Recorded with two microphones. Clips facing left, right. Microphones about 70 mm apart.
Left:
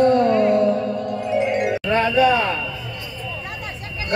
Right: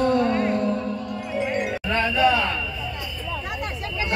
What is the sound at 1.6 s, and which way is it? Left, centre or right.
Music, left.